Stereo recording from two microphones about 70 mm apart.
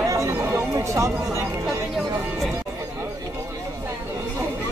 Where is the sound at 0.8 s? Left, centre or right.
Right.